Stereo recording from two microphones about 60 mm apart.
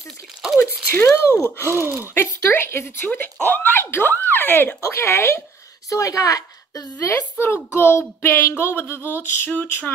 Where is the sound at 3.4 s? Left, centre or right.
Left.